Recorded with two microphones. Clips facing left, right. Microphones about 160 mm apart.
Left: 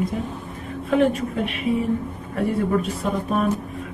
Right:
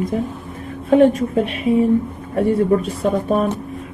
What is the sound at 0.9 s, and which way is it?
A woman's voice, 25° right (ahead or behind).